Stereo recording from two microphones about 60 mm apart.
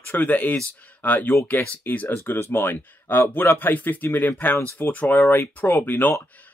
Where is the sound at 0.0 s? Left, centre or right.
Left.